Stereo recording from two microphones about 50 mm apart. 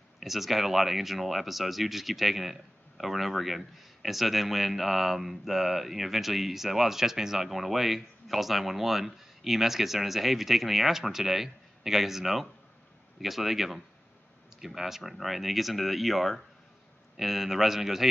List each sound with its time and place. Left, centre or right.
0.2 s speech: centre